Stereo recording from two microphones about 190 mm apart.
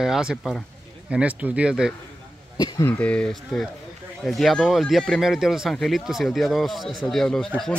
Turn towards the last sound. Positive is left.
turn(degrees=0)  # may be behind; listen again after turning